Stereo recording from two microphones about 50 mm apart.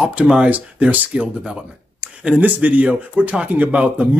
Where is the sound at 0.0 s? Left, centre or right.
Right.